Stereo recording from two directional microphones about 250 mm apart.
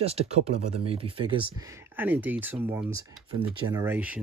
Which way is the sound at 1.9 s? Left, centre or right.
Centre.